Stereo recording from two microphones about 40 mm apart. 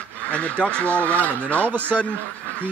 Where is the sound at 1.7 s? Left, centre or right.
Right.